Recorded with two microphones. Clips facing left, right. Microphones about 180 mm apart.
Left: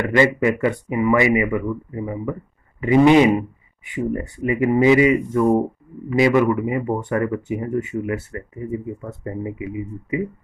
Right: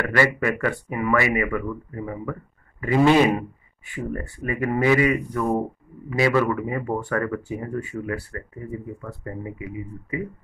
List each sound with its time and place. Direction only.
0.1 s speech: 20° left (ahead or behind)